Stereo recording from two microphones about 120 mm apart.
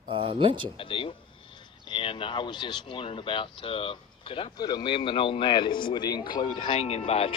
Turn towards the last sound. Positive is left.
turn(degrees=55)  # may be behind; listen again after turning